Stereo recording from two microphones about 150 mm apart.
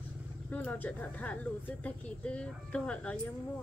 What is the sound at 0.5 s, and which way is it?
Speech, 10° left (ahead or behind).